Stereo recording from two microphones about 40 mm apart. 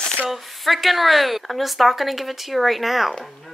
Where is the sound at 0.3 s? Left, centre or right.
Centre.